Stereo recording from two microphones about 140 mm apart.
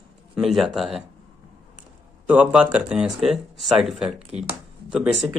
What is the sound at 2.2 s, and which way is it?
Speech, 10° right (ahead or behind).